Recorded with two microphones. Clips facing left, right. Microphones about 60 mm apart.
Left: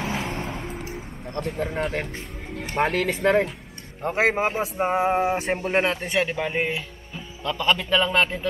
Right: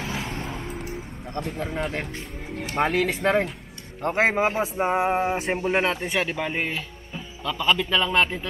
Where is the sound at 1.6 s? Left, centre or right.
Centre.